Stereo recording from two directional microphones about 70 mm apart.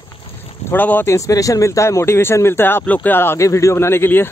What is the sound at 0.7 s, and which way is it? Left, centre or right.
Speech, left.